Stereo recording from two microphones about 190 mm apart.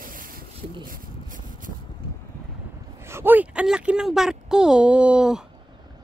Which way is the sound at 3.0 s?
10° right (ahead or behind).